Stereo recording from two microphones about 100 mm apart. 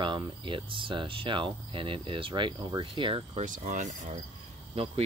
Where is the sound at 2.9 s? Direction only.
60° right (ahead or behind).